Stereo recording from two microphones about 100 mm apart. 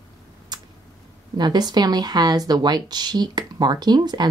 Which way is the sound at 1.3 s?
45° right (ahead or behind).